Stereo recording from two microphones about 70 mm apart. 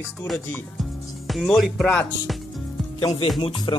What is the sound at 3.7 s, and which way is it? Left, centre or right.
Speech, left.